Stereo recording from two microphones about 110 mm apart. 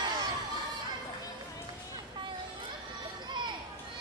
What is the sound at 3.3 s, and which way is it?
Children playing, 45° right (ahead or behind).